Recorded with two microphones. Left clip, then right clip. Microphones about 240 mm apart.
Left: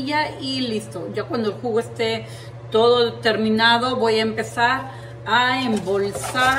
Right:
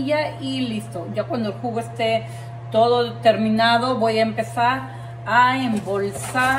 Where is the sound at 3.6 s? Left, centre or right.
Centre.